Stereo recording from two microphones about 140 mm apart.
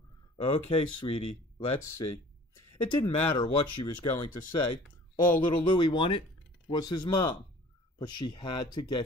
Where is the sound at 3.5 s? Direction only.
35° left (ahead or behind).